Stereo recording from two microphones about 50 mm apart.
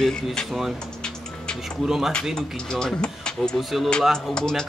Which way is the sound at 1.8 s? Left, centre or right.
Centre.